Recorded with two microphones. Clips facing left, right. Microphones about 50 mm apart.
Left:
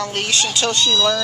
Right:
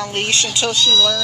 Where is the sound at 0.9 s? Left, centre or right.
Left.